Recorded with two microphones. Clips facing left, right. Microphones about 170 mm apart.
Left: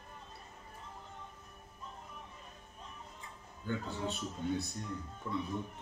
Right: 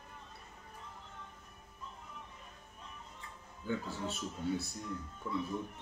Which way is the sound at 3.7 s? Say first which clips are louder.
Even; 5° right (ahead or behind).